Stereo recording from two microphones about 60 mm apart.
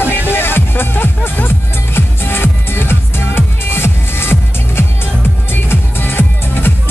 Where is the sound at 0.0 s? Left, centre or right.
Left.